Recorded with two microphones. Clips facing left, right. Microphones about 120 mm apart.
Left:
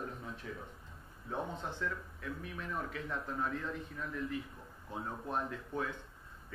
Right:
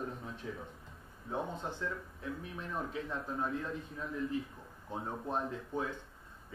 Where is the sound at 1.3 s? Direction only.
15° right (ahead or behind).